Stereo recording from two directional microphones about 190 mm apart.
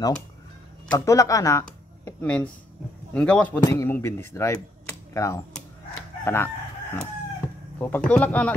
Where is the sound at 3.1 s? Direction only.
5° left (ahead or behind).